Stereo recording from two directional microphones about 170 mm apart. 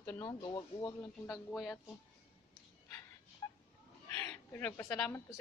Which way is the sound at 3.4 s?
20° left (ahead or behind).